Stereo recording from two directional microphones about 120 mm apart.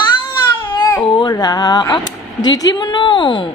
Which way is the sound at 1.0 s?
40° left (ahead or behind).